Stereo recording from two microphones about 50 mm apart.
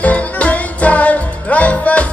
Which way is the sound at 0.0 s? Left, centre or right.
Left.